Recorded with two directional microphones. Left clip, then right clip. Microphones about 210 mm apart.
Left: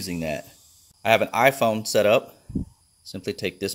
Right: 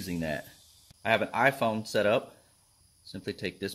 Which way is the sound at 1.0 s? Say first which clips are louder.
Left 7 dB; 30° left (ahead or behind).